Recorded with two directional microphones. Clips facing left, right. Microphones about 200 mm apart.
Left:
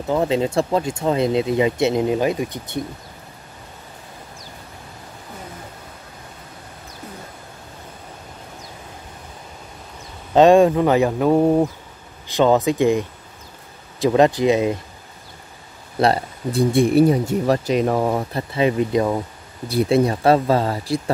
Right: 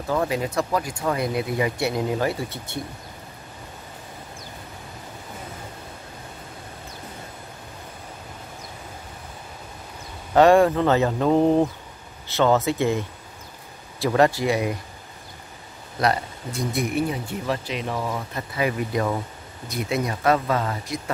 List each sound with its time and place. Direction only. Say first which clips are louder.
0.0 s speech: left 5 dB; 20° left (ahead or behind)
10.3 s speech: left 3 dB; 20° left (ahead or behind)
16.0 s speech: left 5 dB; 30° left (ahead or behind); by 18.2 s 50° left (ahead or behind)
18.3 s speech: left 6 dB; 25° left (ahead or behind)
19.7 s speech: left 9 dB; 30° left (ahead or behind)